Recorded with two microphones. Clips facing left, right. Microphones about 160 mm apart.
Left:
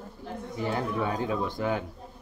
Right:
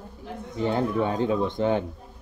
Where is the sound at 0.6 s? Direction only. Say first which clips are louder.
Right 5 dB; 25° right (ahead or behind).